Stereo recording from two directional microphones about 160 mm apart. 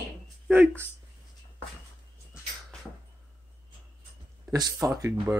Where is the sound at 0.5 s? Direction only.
10° right (ahead or behind).